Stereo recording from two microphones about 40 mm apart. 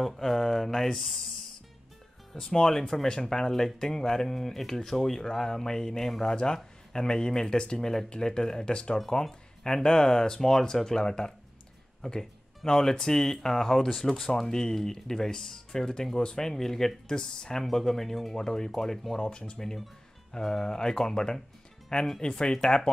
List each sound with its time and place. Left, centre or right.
0.0 s speech: centre
2.3 s speech: centre
8.9 s speech: centre
14.0 s speech: centre
17.1 s speech: centre
17.6 s speech: centre
19.2 s speech: left
20.3 s speech: centre